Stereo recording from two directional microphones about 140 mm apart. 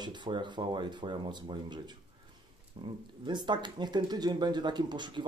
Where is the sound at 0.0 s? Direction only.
35° right (ahead or behind).